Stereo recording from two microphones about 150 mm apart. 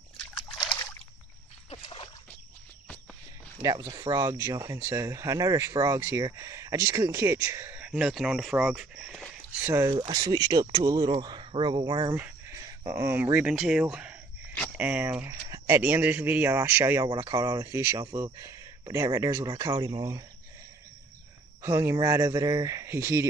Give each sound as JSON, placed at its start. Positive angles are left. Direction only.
{"t": 0.4, "sound": "a sound", "side_deg": 30}
{"t": 1.7, "sound": "splash", "side_deg": 35}
{"t": 3.6, "sound": "speech", "side_deg": -25}
{"t": 7.8, "sound": "speech", "side_deg": -5}
{"t": 9.8, "sound": "speech", "side_deg": -30}
{"t": 17.1, "sound": "speech", "side_deg": -25}
{"t": 21.6, "sound": "speech", "side_deg": -20}